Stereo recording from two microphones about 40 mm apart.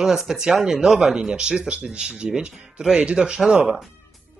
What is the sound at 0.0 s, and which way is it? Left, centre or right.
Speech, centre.